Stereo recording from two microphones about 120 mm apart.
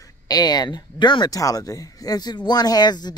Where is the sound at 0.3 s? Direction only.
35° left (ahead or behind).